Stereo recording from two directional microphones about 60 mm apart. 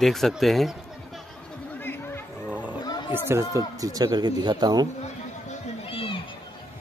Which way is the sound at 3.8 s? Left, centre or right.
Right.